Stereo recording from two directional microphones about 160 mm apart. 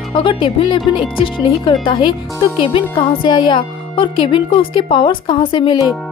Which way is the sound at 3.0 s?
30° left (ahead or behind).